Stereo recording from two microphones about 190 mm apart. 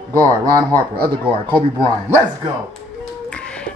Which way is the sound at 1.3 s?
25° right (ahead or behind).